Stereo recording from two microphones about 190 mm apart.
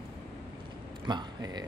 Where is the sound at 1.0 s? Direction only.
20° right (ahead or behind).